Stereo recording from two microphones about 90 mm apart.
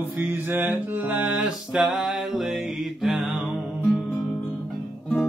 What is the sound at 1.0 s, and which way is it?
Music, 15° right (ahead or behind).